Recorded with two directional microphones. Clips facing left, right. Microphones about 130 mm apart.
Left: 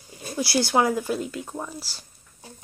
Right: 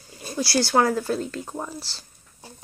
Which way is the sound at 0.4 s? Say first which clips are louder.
Right 1 dB; 20° left (ahead or behind).